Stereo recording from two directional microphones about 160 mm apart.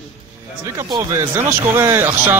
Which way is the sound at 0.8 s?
25° right (ahead or behind).